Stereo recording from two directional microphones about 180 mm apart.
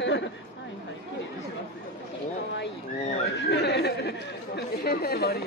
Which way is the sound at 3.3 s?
70° left (ahead or behind).